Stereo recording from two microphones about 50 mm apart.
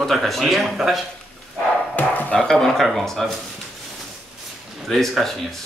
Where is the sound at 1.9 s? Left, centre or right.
Left.